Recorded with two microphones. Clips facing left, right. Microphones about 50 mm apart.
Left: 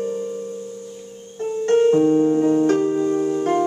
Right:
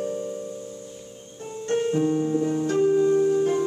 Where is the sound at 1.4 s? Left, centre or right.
Left.